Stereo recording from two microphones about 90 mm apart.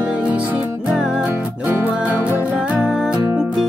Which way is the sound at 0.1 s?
15° right (ahead or behind).